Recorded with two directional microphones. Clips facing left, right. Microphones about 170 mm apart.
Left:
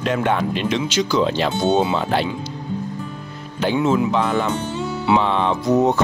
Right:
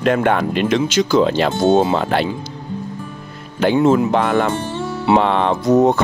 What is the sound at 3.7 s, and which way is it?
Speech, 45° right (ahead or behind).